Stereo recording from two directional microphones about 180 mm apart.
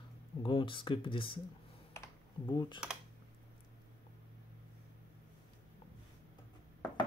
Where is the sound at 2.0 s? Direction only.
20° left (ahead or behind).